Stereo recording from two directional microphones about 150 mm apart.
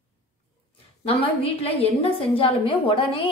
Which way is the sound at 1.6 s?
40° left (ahead or behind).